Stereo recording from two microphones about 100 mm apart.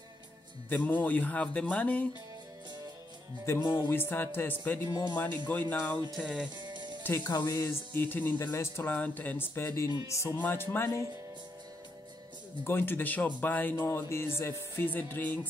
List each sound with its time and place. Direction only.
0.7 s speech: 15° left (ahead or behind)
3.4 s music: 25° left (ahead or behind)
6.1 s speech: 10° right (ahead or behind)
6.6 s music: 50° right (ahead or behind)
7.0 s music: 20° left (ahead or behind)
7.2 s speech: 40° left (ahead or behind)
8.0 s music: 20° left (ahead or behind)
12.6 s music: 20° left (ahead or behind)